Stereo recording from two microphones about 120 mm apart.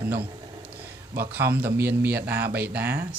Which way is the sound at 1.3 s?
15° right (ahead or behind).